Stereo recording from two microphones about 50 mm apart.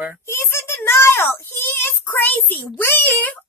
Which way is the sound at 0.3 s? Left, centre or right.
Left.